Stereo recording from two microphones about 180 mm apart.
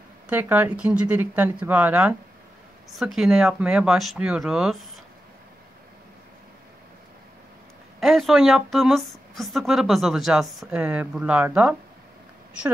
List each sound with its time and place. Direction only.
0.3 s a woman's voice: 10° right (ahead or behind)
8.0 s a woman's voice: centre (ahead or behind)